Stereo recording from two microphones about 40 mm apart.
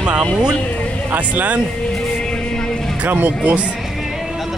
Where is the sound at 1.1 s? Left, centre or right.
Right.